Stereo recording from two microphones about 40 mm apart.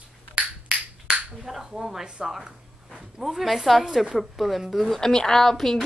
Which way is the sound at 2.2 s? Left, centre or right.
Centre.